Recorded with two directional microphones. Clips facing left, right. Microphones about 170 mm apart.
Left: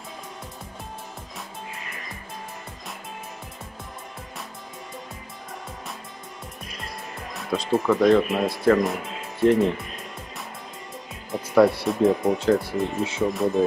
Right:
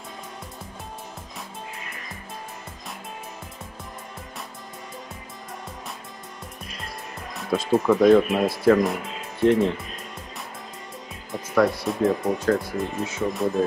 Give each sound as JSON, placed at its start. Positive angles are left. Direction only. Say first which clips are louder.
{"t": 7.3, "sound": "speech", "louder": "right 2 dB", "side_deg": 0}
{"t": 11.3, "sound": "music", "louder": "left 3 dB", "side_deg": 0}
{"t": 11.8, "sound": "speech", "louder": "left 2 dB", "side_deg": 0}
{"t": 12.6, "sound": "speech", "louder": "left 2 dB", "side_deg": 30}
{"t": 13.3, "sound": "speech", "louder": "left 1 dB", "side_deg": 0}